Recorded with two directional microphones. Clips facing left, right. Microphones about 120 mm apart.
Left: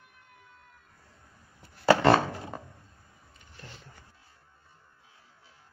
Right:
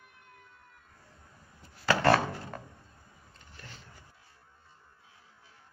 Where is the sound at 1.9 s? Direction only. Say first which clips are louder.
Left 4 dB; 25° left (ahead or behind).